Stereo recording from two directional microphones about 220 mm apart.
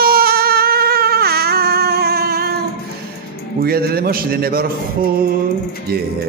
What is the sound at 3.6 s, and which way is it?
A man's voice, 45° right (ahead or behind).